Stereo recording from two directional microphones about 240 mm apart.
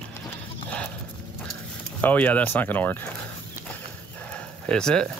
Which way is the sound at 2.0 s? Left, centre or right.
Centre.